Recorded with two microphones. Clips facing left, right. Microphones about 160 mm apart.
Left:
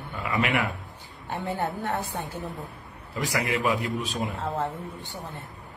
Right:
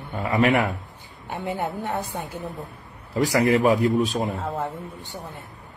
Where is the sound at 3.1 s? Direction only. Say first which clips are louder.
Right 8 dB; 40° right (ahead or behind).